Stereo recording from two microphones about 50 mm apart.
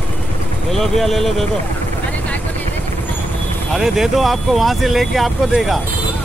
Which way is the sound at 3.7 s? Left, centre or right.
Centre.